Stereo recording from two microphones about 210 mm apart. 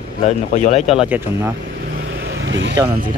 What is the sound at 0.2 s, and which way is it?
Speech, 35° left (ahead or behind).